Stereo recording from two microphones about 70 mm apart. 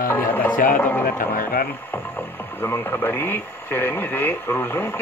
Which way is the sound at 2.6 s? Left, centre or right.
Left.